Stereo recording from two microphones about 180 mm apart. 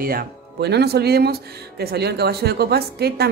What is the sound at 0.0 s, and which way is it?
Speech, 60° right (ahead or behind).